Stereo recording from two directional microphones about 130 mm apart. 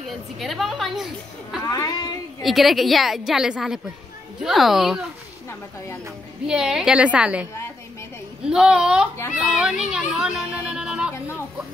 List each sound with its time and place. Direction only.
0.1 s a woman's voice: centre (ahead or behind)
1.6 s speech: 30° left (ahead or behind)
2.4 s a woman's voice: centre (ahead or behind)
6.4 s a woman's voice: 5° right (ahead or behind)
8.5 s a child's voice: 5° right (ahead or behind)